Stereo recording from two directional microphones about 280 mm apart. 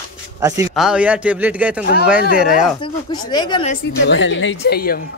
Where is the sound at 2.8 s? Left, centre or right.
Centre.